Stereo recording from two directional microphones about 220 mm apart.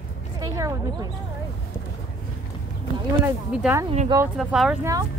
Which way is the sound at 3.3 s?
10° right (ahead or behind).